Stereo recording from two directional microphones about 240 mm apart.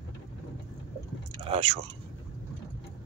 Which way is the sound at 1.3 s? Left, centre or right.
Right.